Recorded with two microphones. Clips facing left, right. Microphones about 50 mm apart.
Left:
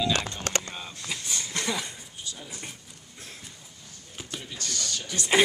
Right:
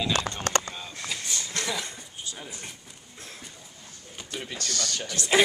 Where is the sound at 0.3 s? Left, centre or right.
Right.